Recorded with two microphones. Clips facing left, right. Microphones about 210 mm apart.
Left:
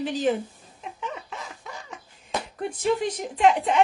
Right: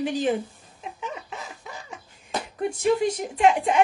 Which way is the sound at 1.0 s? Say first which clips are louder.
Left 1 dB; 10° right (ahead or behind).